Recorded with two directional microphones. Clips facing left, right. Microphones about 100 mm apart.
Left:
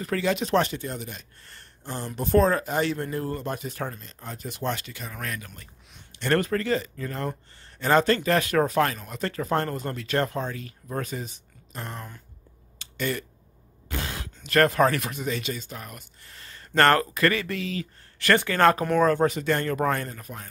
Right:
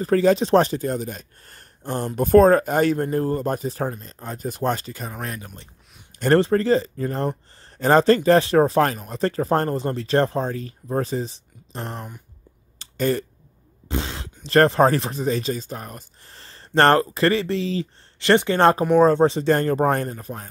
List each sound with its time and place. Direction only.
0.0 s speech: 35° right (ahead or behind)
12.7 s a sound: 35° right (ahead or behind)
13.8 s speech: 25° right (ahead or behind)